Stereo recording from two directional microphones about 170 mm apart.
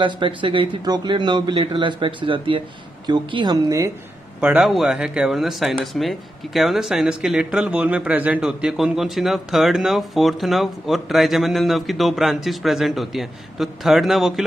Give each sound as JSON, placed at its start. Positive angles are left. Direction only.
{"t": 0.0, "sound": "speech", "side_deg": -30}
{"t": 4.4, "sound": "speech", "side_deg": -10}